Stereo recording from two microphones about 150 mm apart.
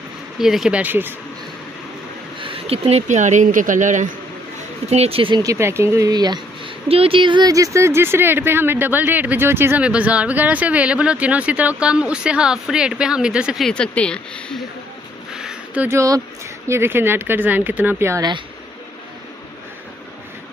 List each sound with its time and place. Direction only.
0.4 s speech: 5° right (ahead or behind)
2.4 s speech: 40° right (ahead or behind); by 4.1 s 55° right (ahead or behind)
4.8 s speech: 45° right (ahead or behind)
5.4 s speech: 20° right (ahead or behind); by 14.6 s 5° left (ahead or behind)
15.3 s a sound: 5° right (ahead or behind)
16.6 s speech: 15° right (ahead or behind)